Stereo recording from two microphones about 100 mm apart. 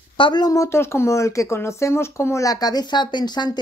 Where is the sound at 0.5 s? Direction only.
30° left (ahead or behind).